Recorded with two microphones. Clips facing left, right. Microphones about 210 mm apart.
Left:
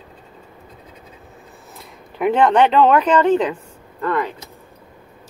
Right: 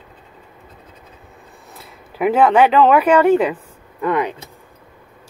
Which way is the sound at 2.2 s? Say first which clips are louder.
Right 1 dB; 5° right (ahead or behind).